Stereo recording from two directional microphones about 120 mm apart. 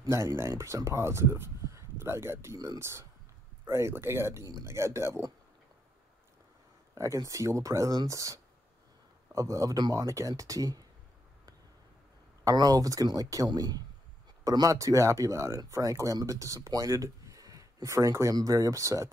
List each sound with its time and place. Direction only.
0.0 s speech: 25° right (ahead or behind)
7.0 s speech: 25° right (ahead or behind)
12.4 s speech: 30° right (ahead or behind)